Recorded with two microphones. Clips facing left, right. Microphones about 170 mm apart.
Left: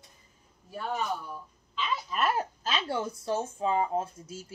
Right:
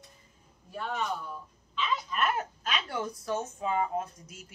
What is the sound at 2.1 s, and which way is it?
Speech, 30° left (ahead or behind).